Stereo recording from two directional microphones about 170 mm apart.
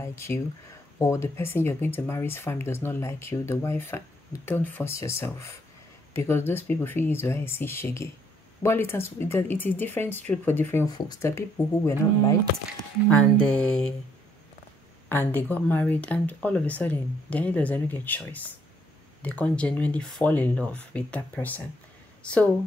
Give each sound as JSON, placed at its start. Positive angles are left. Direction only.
{"t": 0.0, "sound": "speech", "side_deg": 15}
{"t": 10.9, "sound": "speech", "side_deg": 25}
{"t": 15.0, "sound": "speech", "side_deg": 10}